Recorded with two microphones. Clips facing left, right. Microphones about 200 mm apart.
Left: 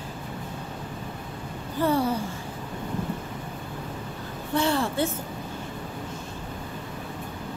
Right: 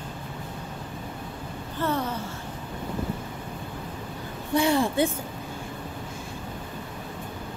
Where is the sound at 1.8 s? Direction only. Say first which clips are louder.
Left 4 dB; 10° left (ahead or behind).